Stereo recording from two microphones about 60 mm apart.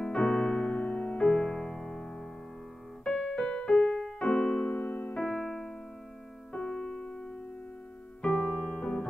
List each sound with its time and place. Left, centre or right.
0.0 s music: centre
5.2 s keyboard: centre
6.5 s piano: centre